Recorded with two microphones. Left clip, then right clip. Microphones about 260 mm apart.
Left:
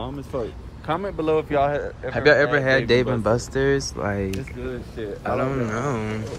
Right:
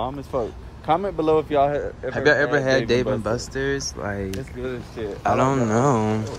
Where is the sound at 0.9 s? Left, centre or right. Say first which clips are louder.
Right 3 dB; right.